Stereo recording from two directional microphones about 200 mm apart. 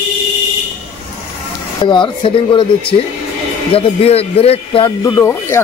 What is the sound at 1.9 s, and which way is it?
Speech, 25° left (ahead or behind).